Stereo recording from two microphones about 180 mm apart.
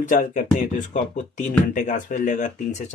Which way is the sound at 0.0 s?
45° left (ahead or behind).